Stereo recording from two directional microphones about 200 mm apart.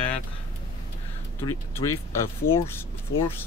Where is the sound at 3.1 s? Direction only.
70° left (ahead or behind).